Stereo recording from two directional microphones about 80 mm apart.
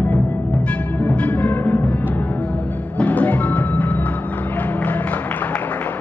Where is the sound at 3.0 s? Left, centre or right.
Centre.